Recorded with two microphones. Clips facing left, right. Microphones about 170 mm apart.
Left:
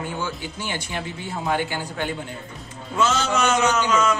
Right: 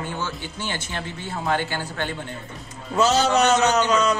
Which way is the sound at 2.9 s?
35° right (ahead or behind).